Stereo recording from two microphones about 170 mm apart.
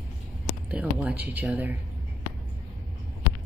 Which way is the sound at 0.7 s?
10° right (ahead or behind).